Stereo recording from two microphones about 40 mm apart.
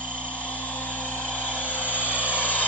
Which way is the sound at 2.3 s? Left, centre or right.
Left.